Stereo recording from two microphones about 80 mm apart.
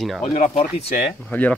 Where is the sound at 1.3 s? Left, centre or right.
Left.